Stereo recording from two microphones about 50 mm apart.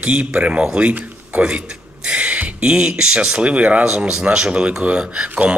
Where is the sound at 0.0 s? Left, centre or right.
Right.